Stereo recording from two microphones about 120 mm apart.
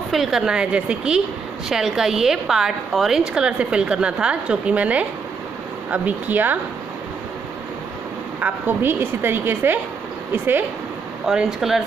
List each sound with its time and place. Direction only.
0.1 s a woman's voice: 5° right (ahead or behind)
8.4 s a woman's voice: 15° right (ahead or behind)
11.2 s a woman's voice: 5° right (ahead or behind)